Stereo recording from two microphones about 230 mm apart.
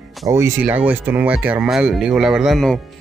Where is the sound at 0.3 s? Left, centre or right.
Centre.